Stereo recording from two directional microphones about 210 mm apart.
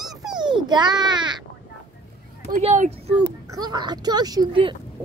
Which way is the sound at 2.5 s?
35° right (ahead or behind).